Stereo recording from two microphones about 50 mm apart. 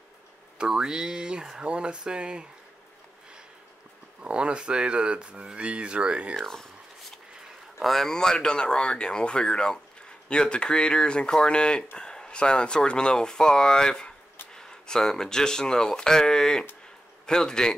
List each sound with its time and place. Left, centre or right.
0.6 s speech: centre
4.2 s speech: right
6.3 s a sound: centre
7.8 s speech: centre